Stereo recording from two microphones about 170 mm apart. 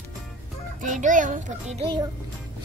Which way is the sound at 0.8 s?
50° right (ahead or behind).